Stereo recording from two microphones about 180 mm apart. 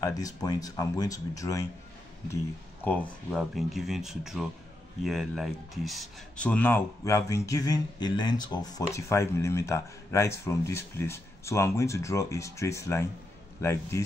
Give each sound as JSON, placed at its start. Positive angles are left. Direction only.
{"t": 0.0, "sound": "speech", "side_deg": 20}
{"t": 2.8, "sound": "speech", "side_deg": 10}